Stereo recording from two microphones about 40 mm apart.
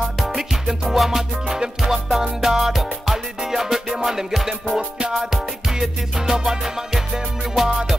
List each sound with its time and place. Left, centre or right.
0.4 s music: centre
4.7 s music: right
5.3 s music: centre